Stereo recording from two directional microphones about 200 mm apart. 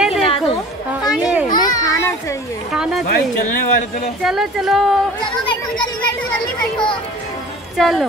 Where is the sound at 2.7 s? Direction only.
Centre (ahead or behind).